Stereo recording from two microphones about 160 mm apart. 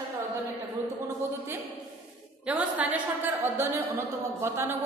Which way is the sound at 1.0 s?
20° right (ahead or behind).